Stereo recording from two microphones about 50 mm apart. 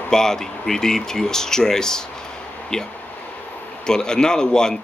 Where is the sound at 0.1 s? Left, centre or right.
Centre.